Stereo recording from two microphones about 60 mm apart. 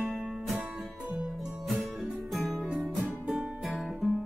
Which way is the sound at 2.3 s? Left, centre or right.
Centre.